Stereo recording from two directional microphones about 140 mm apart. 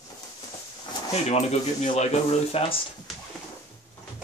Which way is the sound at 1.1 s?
50° left (ahead or behind).